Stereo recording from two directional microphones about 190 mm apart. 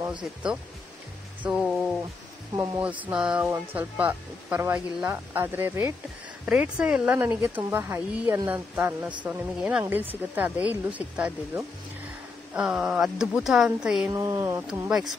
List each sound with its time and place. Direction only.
0.2 s speech: 5° right (ahead or behind)
2.5 s speech: 10° right (ahead or behind)
14.1 s speech: 15° right (ahead or behind)
14.9 s speech: centre (ahead or behind)